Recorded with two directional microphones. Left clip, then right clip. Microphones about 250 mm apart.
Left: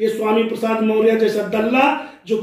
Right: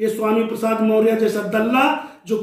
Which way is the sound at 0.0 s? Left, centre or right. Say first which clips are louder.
Left 2 dB; centre.